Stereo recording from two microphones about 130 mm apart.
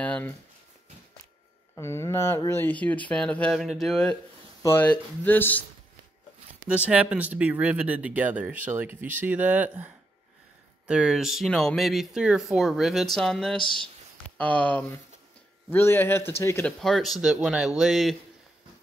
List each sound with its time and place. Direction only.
0.0 s a sound: 10° left (ahead or behind)
1.8 s speech: 20° left (ahead or behind)
4.6 s speech: 15° left (ahead or behind)
6.7 s speech: 10° right (ahead or behind); by 16.6 s 20° left (ahead or behind)
16.6 s speech: centre (ahead or behind)